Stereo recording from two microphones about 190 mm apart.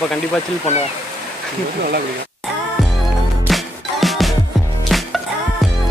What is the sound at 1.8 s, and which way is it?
Speech, 55° right (ahead or behind).